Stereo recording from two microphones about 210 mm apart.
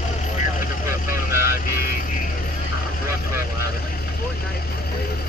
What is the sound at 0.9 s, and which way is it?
Vehicle, 10° right (ahead or behind).